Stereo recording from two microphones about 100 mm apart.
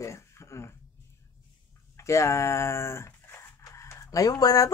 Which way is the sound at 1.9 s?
30° left (ahead or behind).